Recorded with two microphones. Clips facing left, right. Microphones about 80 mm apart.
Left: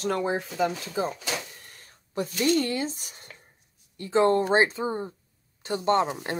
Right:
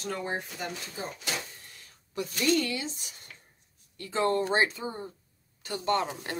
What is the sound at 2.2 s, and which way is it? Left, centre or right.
Speech, left.